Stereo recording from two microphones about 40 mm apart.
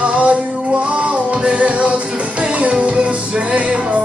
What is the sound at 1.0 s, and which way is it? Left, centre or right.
Music, right.